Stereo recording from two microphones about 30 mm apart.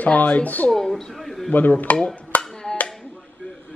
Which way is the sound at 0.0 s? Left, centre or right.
Left.